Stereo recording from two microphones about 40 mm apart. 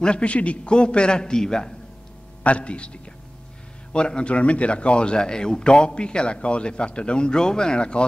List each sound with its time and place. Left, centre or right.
0.0 s speech: left
2.4 s speech: left